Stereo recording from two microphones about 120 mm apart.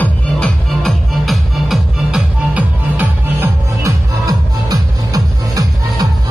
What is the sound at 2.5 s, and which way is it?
Music, 15° right (ahead or behind).